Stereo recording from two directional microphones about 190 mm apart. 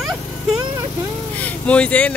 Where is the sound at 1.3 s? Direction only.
5° left (ahead or behind).